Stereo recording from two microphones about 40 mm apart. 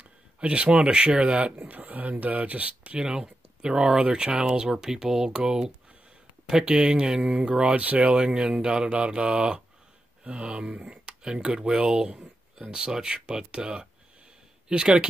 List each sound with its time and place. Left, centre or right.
0.4 s speech: right
1.6 s speech: right
3.0 s speech: right
7.4 s speech: right
8.1 s speech: right